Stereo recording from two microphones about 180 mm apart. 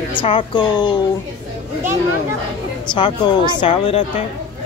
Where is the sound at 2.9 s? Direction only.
25° left (ahead or behind).